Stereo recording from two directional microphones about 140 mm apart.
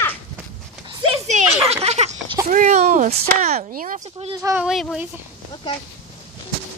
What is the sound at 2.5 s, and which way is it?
Speech, 65° right (ahead or behind).